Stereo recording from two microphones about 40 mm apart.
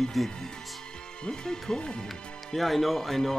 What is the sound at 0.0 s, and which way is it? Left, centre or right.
Speech, centre.